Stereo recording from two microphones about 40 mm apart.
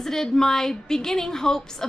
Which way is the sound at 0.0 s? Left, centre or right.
Centre.